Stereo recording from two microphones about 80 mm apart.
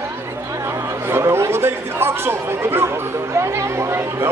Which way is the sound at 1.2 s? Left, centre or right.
Right.